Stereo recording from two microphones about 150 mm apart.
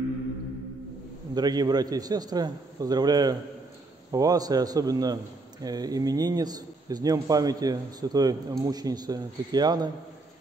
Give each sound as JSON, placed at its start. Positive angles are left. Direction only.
{"t": 1.3, "sound": "a man's voice", "side_deg": -25}